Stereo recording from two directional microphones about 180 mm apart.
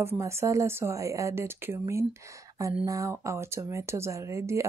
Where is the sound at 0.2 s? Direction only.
15° right (ahead or behind).